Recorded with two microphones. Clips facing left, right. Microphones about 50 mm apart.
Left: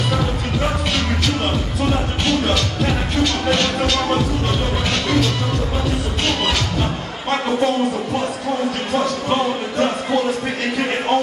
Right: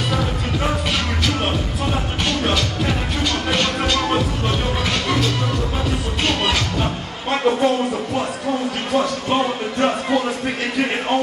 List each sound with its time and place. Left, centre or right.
3.5 s music: centre
6.2 s music: centre
8.9 s speech: centre